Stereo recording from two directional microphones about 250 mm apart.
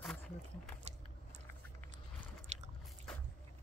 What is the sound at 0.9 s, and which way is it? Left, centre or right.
Biting, right.